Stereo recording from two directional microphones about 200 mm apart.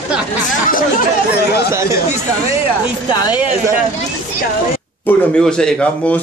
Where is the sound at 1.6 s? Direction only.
15° right (ahead or behind).